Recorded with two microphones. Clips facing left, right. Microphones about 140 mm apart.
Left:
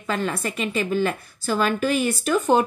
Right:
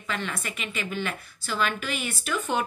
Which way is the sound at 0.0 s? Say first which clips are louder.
Left 7 dB; 40° left (ahead or behind).